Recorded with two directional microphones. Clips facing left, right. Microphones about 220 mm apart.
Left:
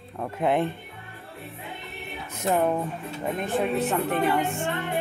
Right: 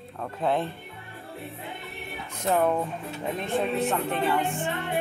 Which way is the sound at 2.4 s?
10° left (ahead or behind).